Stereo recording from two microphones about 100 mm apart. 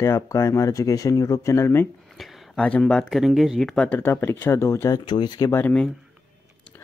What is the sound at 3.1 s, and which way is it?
Speech, 5° right (ahead or behind).